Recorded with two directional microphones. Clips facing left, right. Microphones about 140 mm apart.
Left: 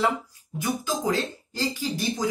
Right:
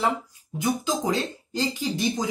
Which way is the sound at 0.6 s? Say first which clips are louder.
Right 2 dB; 20° right (ahead or behind).